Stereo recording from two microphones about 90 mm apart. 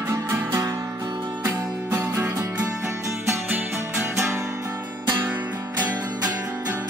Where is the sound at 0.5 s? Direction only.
40° right (ahead or behind).